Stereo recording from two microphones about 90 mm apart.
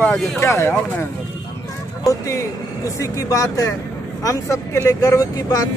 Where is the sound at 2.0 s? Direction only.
40° left (ahead or behind).